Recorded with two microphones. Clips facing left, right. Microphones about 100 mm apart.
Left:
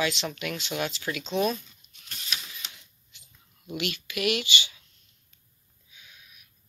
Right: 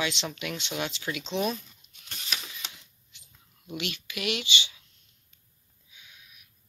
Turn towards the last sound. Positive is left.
turn(degrees=-20)  # may be behind; listen again after turning